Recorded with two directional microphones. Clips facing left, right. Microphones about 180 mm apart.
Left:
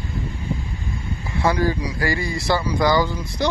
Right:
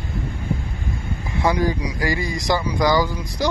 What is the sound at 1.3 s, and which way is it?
Speech, 15° right (ahead or behind).